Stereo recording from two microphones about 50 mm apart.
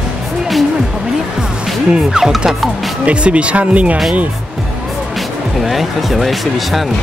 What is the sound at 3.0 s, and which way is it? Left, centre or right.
Speech, right.